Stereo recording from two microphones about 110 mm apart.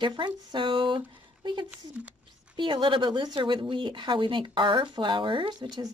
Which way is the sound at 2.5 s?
45° right (ahead or behind).